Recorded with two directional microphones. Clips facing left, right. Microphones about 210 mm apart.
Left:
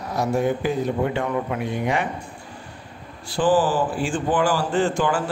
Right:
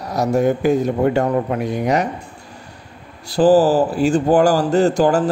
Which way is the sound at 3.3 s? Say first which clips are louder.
Right 7 dB; 40° right (ahead or behind).